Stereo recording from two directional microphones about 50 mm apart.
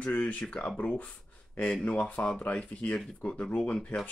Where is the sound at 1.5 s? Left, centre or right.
Left.